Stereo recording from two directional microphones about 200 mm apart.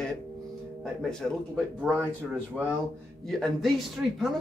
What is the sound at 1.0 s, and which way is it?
Speech, 5° left (ahead or behind).